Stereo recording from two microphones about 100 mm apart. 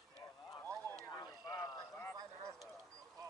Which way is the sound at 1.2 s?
35° left (ahead or behind).